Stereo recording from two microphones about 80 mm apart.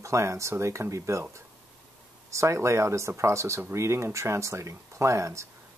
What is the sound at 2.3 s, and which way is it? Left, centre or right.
Speech, right.